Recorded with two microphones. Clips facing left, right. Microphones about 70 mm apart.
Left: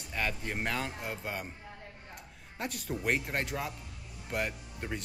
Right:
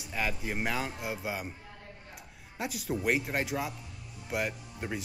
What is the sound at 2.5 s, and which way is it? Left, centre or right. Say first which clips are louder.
Speech: right 3 dB; centre.